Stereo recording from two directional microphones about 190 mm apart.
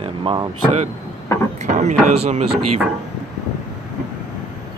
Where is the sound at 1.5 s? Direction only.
40° right (ahead or behind).